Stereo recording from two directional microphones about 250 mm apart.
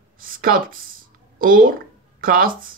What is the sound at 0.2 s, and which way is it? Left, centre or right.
Speech, right.